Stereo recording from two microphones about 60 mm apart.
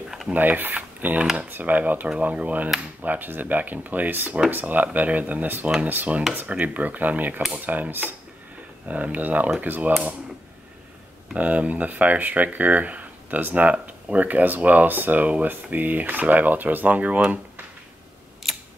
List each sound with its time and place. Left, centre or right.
0.3 s speech: right
11.3 s speech: right
18.4 s scissors: centre